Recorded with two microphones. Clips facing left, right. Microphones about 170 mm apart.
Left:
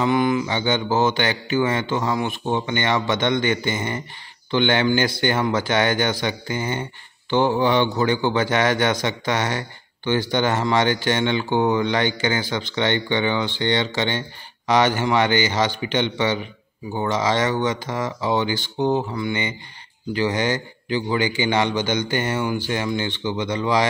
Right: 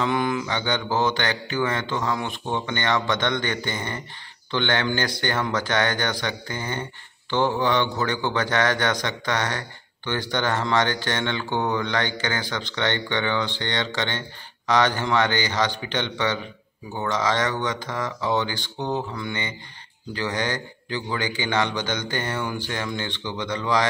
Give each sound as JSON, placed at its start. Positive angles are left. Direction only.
{"t": 0.0, "sound": "mantra", "side_deg": 5}
{"t": 0.7, "sound": "a man's voice", "side_deg": 10}